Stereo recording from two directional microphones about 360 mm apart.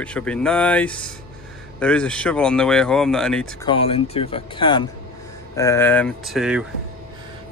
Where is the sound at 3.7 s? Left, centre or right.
Centre.